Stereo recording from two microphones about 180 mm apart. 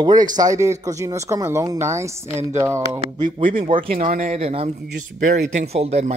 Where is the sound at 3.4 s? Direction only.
50° right (ahead or behind).